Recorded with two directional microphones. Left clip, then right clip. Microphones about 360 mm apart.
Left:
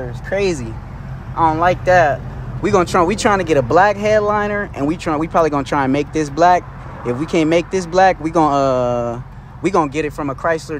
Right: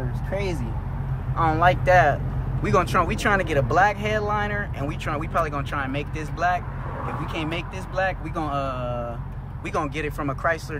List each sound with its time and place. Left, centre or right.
0.4 s speech: left
1.3 s speech: centre